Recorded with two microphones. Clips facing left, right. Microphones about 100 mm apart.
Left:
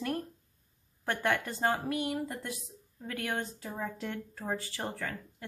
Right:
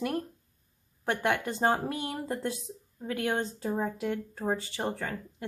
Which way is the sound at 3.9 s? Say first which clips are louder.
Right 6 dB; 10° right (ahead or behind).